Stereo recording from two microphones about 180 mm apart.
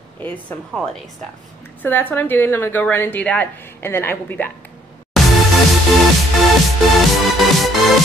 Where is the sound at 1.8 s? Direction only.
10° left (ahead or behind).